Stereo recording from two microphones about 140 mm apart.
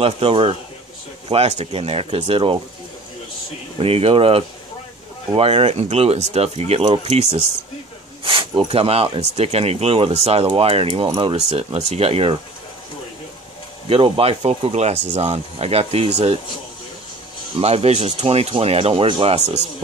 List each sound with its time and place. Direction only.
0.0 s speech: 45° right (ahead or behind)
3.8 s speech: 45° right (ahead or behind)
8.2 s speech: 40° right (ahead or behind)
13.8 s speech: 40° right (ahead or behind)
17.6 s speech: 45° right (ahead or behind)